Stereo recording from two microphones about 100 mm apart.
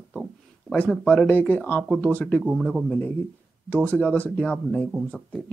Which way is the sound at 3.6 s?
15° left (ahead or behind).